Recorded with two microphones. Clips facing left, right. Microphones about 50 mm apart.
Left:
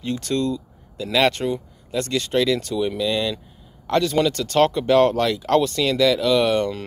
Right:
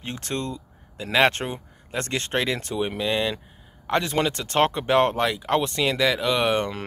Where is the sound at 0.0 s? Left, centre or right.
Right.